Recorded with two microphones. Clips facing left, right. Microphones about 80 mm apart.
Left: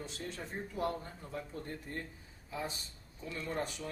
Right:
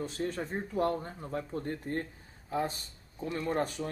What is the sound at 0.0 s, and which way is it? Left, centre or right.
Speech, right.